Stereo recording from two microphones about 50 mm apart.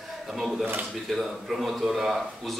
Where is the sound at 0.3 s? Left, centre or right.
Centre.